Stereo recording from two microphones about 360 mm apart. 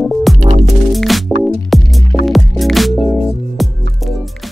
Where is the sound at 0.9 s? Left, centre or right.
Centre.